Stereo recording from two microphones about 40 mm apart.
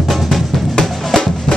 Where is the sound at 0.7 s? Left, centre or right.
Centre.